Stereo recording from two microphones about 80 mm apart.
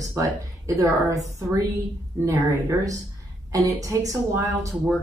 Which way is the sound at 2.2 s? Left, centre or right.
Right.